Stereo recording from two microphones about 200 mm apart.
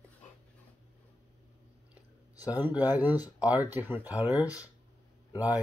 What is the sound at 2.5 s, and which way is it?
Speech, 10° right (ahead or behind).